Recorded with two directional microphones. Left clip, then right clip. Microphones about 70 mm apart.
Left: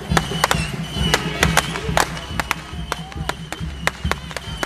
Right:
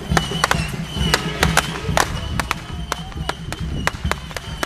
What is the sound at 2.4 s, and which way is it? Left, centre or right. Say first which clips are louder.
Music: even; right.